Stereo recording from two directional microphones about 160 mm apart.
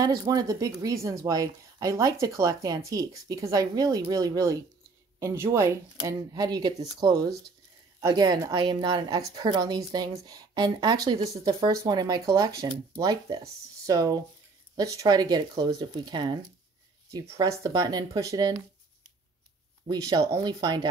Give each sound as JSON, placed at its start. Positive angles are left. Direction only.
{"t": 0.0, "sound": "speech", "side_deg": -20}
{"t": 20.2, "sound": "speech", "side_deg": -20}